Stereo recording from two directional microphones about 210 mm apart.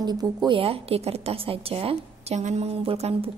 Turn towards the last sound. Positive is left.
turn(degrees=-30)  # may be behind; listen again after turning